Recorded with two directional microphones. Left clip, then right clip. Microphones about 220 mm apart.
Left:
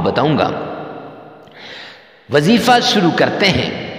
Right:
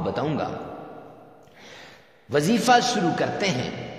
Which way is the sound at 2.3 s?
35° left (ahead or behind).